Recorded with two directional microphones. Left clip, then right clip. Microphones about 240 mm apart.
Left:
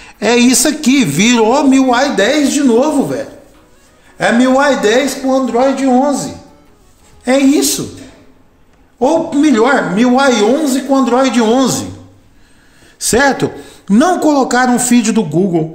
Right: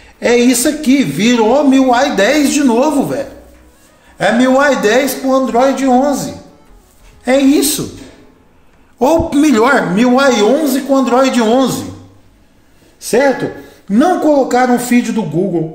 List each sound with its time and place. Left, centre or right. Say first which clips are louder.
0.0 s speech: even; left
1.7 s a man's voice: even; centre
8.9 s a man's voice: right 1 dB; centre
11.5 s a woman's voice: even; centre
13.0 s speech: left 1 dB; left